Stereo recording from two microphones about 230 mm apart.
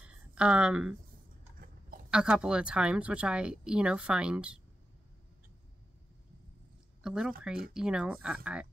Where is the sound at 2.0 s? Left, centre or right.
Centre.